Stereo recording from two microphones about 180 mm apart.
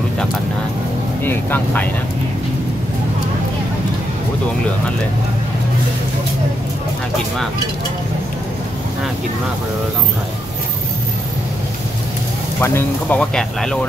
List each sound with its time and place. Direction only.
1.2 s speech: 10° left (ahead or behind)
12.5 s speech: 10° left (ahead or behind)